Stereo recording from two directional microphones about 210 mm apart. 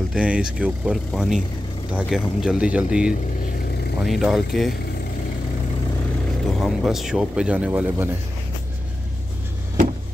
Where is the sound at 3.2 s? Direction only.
45° left (ahead or behind).